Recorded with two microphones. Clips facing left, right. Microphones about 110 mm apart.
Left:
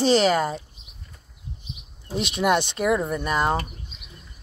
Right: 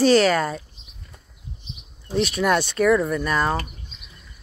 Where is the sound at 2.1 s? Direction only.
20° left (ahead or behind).